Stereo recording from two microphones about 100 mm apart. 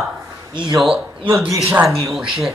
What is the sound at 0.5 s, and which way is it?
Speech, 55° right (ahead or behind).